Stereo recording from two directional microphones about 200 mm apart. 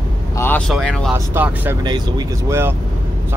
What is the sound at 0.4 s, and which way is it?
Speech, 5° left (ahead or behind).